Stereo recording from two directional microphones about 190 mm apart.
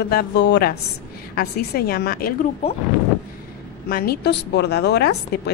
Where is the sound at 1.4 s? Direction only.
55° left (ahead or behind).